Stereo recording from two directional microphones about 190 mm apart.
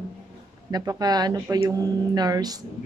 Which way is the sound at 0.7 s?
20° right (ahead or behind).